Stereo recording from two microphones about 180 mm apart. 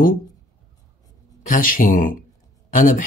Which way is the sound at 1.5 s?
50° left (ahead or behind).